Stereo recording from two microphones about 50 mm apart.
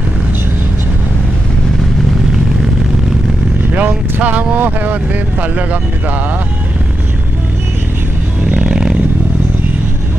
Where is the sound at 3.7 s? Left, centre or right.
Right.